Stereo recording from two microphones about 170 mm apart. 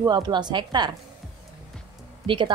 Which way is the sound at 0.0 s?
25° right (ahead or behind).